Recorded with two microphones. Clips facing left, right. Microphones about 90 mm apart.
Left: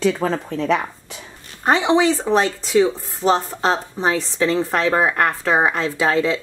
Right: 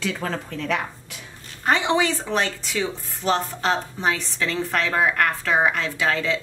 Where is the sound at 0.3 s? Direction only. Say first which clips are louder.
Left 6 dB; 35° left (ahead or behind).